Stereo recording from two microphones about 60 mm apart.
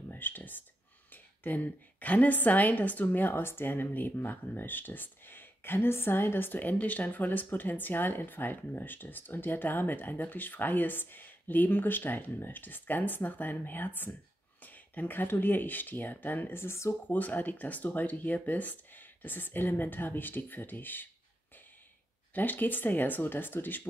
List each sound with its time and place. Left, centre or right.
0.1 s a sound: left
1.1 s a woman's voice: left
16.6 s speech: left
17.1 s a woman's voice: left
22.3 s a woman's voice: left